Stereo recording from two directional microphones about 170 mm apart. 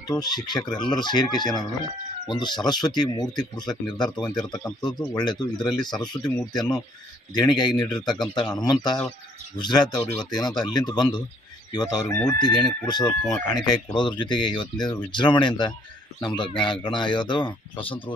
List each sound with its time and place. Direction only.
0.0 s speech: 25° left (ahead or behind)